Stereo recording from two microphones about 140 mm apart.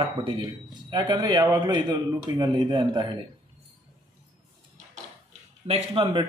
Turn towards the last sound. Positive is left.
turn(degrees=-35)  # may be behind; listen again after turning